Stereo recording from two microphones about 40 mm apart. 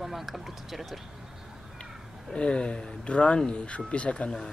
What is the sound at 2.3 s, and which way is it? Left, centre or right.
Speech, left.